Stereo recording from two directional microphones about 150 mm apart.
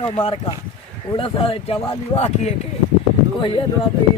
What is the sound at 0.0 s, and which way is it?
Speech, 35° left (ahead or behind).